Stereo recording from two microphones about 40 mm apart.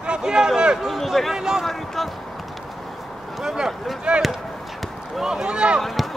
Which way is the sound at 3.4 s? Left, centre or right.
Centre.